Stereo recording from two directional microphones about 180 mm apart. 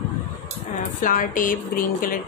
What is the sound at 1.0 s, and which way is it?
A woman's voice, 50° left (ahead or behind).